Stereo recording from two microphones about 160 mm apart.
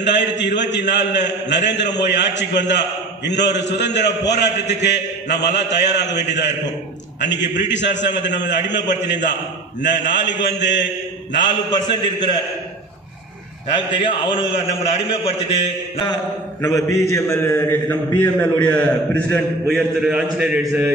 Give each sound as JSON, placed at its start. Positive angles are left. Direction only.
{"t": 0.0, "sound": "a man's voice", "side_deg": 90}
{"t": 11.7, "sound": "a man's voice", "side_deg": 25}
{"t": 14.0, "sound": "a man's voice", "side_deg": 35}
{"t": 17.1, "sound": "a man's voice", "side_deg": 15}